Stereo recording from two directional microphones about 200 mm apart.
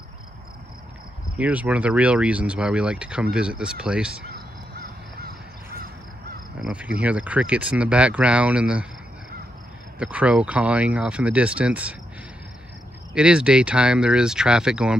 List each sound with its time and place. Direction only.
1.4 s speech: 5° right (ahead or behind)
4.3 s crow: 50° right (ahead or behind)
6.6 s speech: 5° right (ahead or behind)
9.9 s speech: 5° right (ahead or behind)
13.1 s speech: 5° right (ahead or behind)